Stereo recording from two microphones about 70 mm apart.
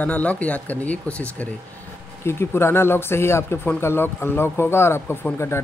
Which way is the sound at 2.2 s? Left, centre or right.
Left.